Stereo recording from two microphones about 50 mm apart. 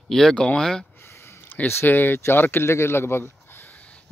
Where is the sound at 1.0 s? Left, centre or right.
Left.